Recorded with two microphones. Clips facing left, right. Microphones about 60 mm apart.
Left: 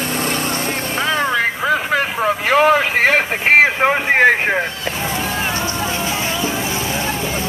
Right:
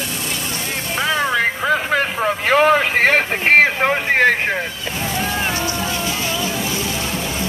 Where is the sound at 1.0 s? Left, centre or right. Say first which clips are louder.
Even; centre.